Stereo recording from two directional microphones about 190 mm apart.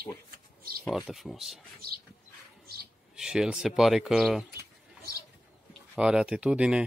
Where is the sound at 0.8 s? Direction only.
Centre (ahead or behind).